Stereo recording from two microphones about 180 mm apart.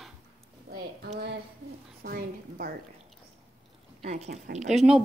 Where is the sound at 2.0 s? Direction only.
55° right (ahead or behind).